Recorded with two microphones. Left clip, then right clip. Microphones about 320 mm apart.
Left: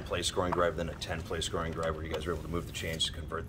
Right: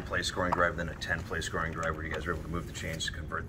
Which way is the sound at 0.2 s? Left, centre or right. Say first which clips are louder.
Right 1 dB; left.